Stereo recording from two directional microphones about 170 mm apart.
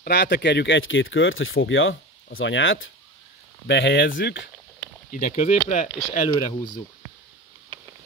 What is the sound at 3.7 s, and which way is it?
Speech, 90° left.